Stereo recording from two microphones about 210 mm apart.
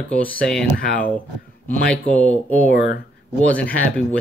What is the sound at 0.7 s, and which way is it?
Speech, 40° left (ahead or behind).